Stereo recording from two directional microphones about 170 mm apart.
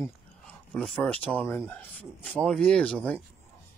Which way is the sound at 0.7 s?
5° left (ahead or behind).